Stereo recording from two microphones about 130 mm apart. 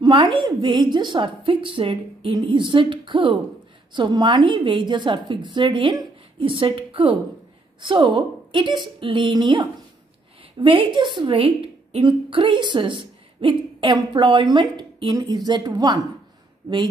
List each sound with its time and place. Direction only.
0.0 s a woman's voice: 35° right (ahead or behind)